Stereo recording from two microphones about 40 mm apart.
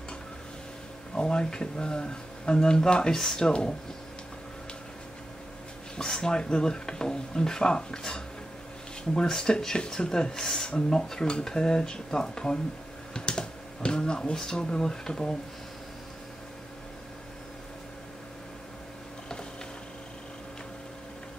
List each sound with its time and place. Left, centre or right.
1.1 s speech: left
5.9 s speech: centre